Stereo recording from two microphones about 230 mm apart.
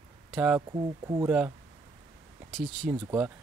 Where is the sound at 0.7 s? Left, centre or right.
Centre.